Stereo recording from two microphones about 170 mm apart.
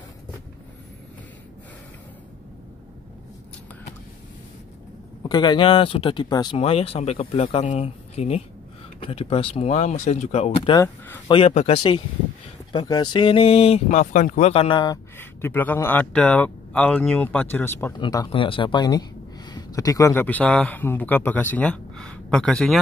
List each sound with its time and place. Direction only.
5.3 s speech: 25° left (ahead or behind)
6.6 s speech: 35° left (ahead or behind); by 14.5 s 50° left (ahead or behind)
14.5 s speech: 30° left (ahead or behind)
15.1 s speech: 15° left (ahead or behind)
17.9 s speech: 25° left (ahead or behind); by 22.8 s 5° left (ahead or behind)